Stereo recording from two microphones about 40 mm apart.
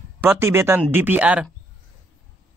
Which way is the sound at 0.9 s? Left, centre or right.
Right.